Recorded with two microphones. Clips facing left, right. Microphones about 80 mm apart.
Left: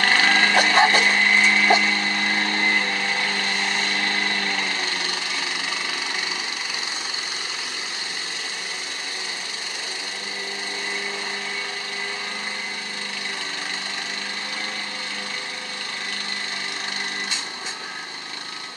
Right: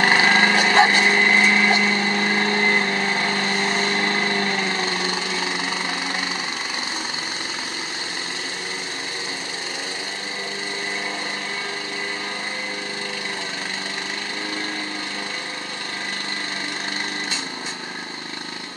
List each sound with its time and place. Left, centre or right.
0.0 s vehicle: right